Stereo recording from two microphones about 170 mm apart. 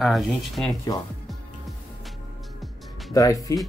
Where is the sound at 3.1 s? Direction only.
20° left (ahead or behind).